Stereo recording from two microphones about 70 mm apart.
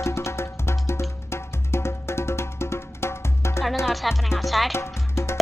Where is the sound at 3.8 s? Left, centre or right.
Centre.